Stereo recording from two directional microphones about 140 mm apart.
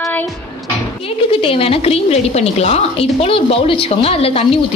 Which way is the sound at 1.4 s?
40° left (ahead or behind).